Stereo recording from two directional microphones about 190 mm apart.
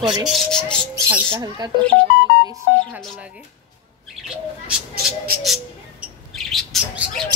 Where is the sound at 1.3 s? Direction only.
20° right (ahead or behind).